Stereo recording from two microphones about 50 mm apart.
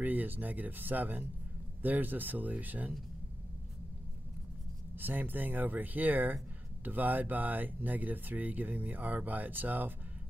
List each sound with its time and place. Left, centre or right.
0.0 s speech: right
4.9 s speech: right